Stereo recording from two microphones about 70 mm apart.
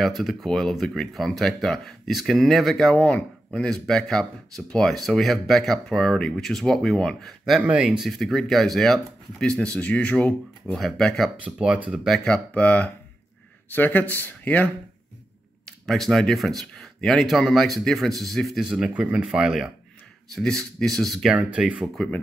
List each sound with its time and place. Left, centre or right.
0.0 s speech: centre
3.0 s speech: centre
7.6 s speech: centre
8.1 s speech: centre
11.4 s speech: centre
12.3 s speech: left
15.8 s speech: centre
18.6 s speech: centre
18.9 s speech: centre
19.2 s speech: centre
20.3 s speech: centre
21.4 s speech: centre